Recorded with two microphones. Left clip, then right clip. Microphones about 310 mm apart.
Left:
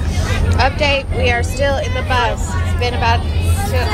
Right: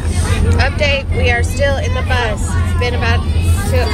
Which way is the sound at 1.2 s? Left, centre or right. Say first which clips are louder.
Right 2 dB; centre.